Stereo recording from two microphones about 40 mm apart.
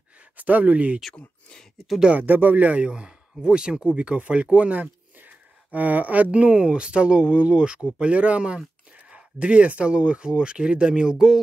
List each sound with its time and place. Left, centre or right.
0.4 s speech: right
2.2 s speech: right
2.9 s speech: right